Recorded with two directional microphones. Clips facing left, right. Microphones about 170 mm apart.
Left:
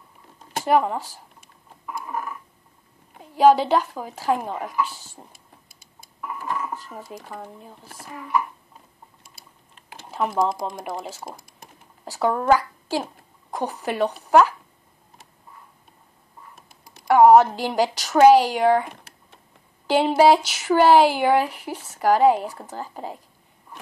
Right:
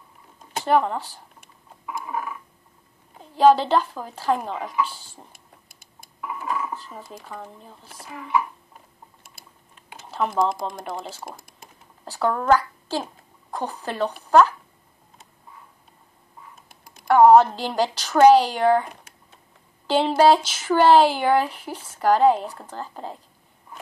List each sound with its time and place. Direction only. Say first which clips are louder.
0.7 s a woman's voice: even; 5° left (ahead or behind)
1.9 s a sound: right 1 dB; 5° right (ahead or behind)
3.3 s a woman's voice: even; 5° left (ahead or behind)
5.3 s a sound: even; 50° right (ahead or behind)
6.2 s dishes: right 1 dB; 5° right (ahead or behind)
7.1 s speech: left 1 dB; 10° left (ahead or behind)
10.1 s a woman's voice: even; 5° left (ahead or behind)
16.6 s computer keyboard: even; 55° right (ahead or behind)
17.1 s speech: even; 10° left (ahead or behind)
19.9 s speech: left 1 dB; 5° left (ahead or behind)